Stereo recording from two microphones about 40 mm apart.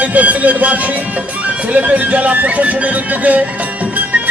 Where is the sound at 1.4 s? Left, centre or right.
Right.